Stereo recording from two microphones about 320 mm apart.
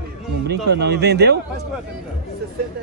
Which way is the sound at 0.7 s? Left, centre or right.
Right.